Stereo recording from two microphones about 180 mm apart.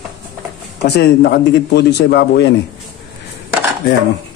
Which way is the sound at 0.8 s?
65° left (ahead or behind).